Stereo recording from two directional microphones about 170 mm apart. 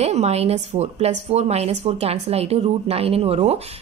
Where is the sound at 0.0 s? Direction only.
40° right (ahead or behind).